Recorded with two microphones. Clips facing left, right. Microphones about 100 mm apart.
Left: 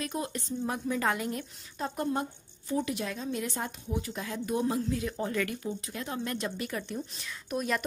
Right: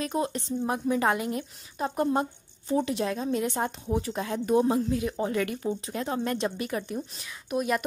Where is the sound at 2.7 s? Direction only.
25° right (ahead or behind).